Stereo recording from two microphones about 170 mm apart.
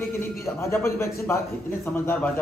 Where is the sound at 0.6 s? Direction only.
15° left (ahead or behind).